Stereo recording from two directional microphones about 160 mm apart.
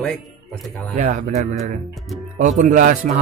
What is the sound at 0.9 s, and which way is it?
Speech, 50° right (ahead or behind).